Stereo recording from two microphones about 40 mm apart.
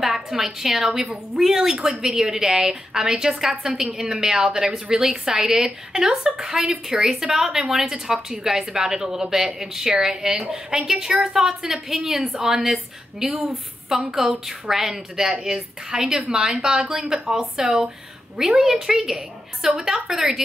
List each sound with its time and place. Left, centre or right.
0.0 s a woman's voice: centre